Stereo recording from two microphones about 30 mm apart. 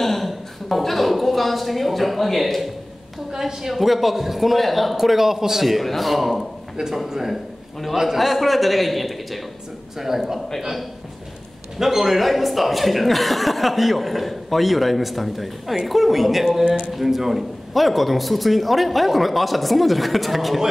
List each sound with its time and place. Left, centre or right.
0.0 s a sound: centre
0.3 s a woman's voice: centre
3.3 s speech: centre
3.7 s speech: centre
7.1 s speech: centre
8.2 s speech: centre
9.9 s speech: centre
11.8 s speech: centre
17.7 s speech: centre